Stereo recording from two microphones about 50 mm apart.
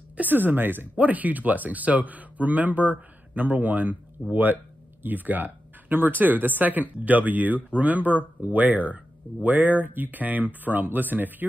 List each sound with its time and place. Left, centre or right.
0.2 s speech: right